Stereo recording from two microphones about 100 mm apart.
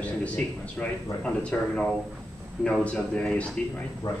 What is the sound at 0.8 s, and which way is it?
A man's voice, 15° left (ahead or behind).